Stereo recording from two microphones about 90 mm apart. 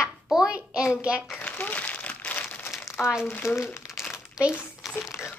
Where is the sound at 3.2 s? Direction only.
25° left (ahead or behind).